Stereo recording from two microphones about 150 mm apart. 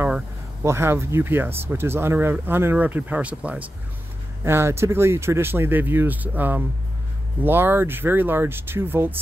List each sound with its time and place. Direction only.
0.0 s speech: 15° right (ahead or behind)